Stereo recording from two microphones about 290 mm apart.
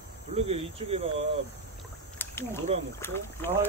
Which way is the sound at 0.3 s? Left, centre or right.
Centre.